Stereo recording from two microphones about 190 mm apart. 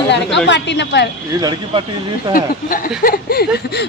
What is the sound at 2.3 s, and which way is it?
Speech, 45° left (ahead or behind).